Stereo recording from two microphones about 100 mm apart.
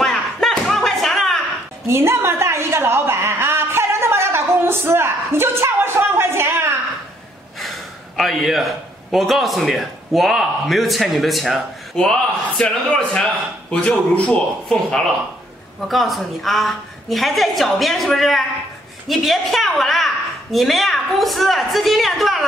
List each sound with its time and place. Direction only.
0.0 s slam: centre (ahead or behind)
1.9 s a sound: 25° right (ahead or behind)
8.2 s a man's voice: centre (ahead or behind)
15.9 s a man's voice: centre (ahead or behind)